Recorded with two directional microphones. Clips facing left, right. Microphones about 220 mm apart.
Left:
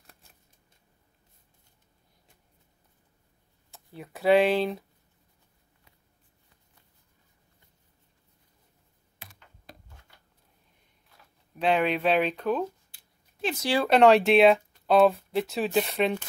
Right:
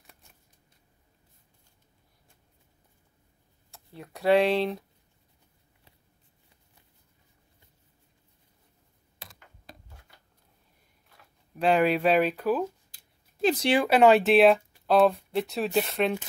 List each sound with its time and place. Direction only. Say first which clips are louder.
3.7 s speech: left 1 dB; centre (ahead or behind)
11.1 s speech: right 2 dB; 5° right (ahead or behind)
12.9 s a sound: right 1 dB; 35° right (ahead or behind)
13.8 s speech: left 1 dB; 5° right (ahead or behind)